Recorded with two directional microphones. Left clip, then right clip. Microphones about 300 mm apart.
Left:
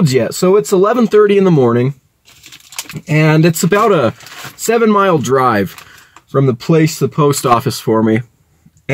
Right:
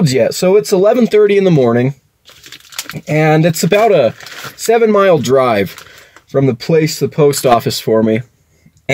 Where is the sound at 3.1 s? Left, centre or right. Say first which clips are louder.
Right 1 dB; centre.